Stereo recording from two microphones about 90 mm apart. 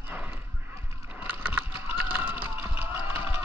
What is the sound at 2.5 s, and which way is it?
Vehicle, 25° right (ahead or behind).